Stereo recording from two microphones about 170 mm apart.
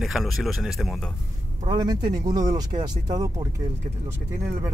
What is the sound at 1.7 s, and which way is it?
Speech, 25° right (ahead or behind).